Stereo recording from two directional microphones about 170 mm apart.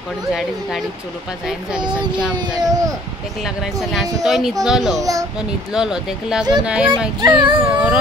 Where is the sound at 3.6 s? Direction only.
Centre (ahead or behind).